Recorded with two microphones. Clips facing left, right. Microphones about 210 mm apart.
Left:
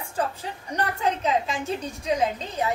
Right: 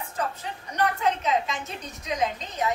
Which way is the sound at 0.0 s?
30° left (ahead or behind).